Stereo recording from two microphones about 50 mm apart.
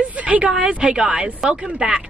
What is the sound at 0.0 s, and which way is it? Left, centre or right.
A woman's voice, right.